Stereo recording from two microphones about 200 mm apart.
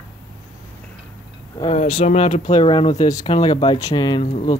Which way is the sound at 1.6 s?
30° left (ahead or behind).